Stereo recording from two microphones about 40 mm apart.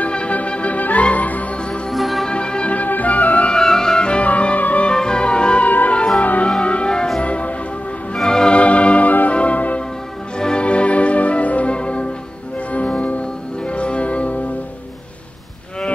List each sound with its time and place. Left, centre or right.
0.0 s music: left
1.9 s music: centre
2.2 s music: left
2.7 s music: left
3.6 s music: centre
4.2 s music: left
4.8 s music: left
5.7 s music: left
6.6 s music: left
8.2 s music: centre
8.5 s music: left
10.4 s music: left